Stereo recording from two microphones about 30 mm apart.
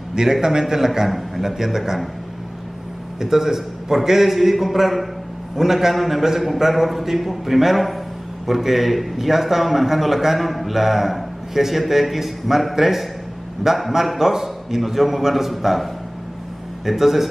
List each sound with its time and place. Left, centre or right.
0.1 s a man's voice: right
3.2 s a man's voice: centre